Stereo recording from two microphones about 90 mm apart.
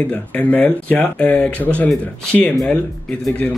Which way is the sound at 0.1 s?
15° left (ahead or behind).